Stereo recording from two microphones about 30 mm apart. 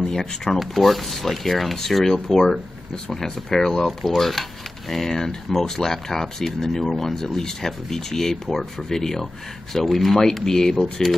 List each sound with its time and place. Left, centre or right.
0.1 s speech: centre
0.7 s speech: centre
4.0 s speech: centre